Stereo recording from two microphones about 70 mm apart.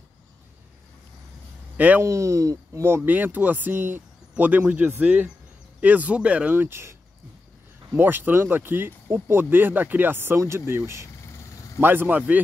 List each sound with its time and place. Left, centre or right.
2.0 s speech: right
3.1 s speech: right
6.5 s speech: right